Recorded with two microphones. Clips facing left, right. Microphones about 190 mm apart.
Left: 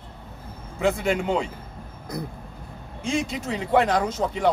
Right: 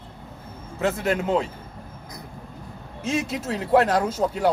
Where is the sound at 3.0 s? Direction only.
5° right (ahead or behind).